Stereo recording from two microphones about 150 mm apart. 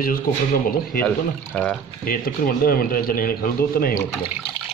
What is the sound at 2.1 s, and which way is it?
Speech, 75° left (ahead or behind).